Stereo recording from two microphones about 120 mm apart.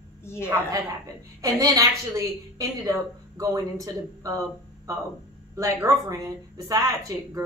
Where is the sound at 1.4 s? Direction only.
30° right (ahead or behind).